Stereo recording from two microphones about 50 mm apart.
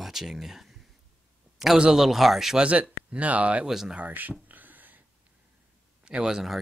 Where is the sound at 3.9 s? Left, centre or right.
Right.